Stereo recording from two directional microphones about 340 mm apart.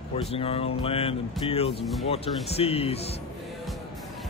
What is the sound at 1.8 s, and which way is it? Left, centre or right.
Speech, centre.